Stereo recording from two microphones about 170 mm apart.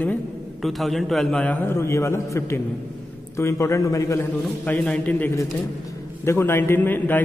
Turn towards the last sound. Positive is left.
turn(degrees=10)  # may be behind; listen again after turning